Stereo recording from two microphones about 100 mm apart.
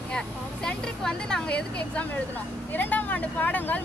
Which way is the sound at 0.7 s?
10° left (ahead or behind).